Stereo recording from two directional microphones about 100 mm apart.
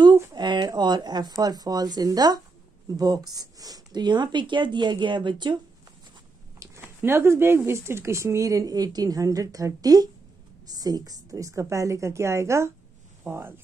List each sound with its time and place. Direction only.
0.3 s a sound: 45° right (ahead or behind)
1.3 s speech: 40° right (ahead or behind)
7.0 s speech: 25° right (ahead or behind)